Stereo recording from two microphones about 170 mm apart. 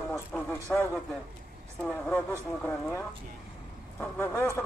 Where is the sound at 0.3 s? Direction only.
5° left (ahead or behind).